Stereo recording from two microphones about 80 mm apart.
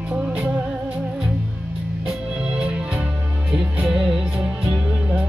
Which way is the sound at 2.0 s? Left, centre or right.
Centre.